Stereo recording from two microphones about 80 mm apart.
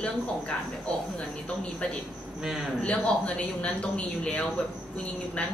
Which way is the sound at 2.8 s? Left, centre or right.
Centre.